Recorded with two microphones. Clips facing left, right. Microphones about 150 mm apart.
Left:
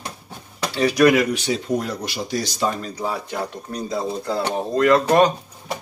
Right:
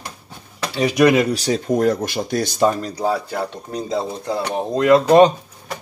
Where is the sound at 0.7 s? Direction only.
20° right (ahead or behind).